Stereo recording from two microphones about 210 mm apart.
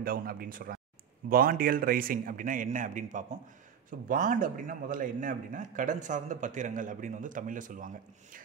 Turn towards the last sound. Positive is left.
turn(degrees=-40)  # may be behind; listen again after turning